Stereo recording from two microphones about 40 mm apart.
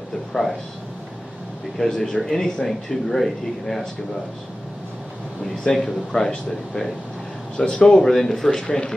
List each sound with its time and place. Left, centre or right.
0.3 s speech: centre
1.8 s speech: centre
5.4 s speech: centre